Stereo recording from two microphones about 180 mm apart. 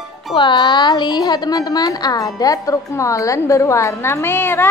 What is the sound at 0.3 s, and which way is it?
A woman's voice, 25° left (ahead or behind).